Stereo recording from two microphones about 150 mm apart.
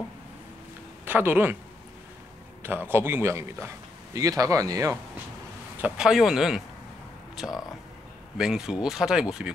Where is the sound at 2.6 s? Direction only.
15° right (ahead or behind).